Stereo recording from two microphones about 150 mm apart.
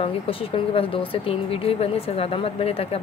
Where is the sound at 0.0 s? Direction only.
40° left (ahead or behind).